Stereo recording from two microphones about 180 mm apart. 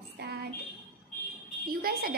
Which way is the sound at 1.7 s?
55° right (ahead or behind).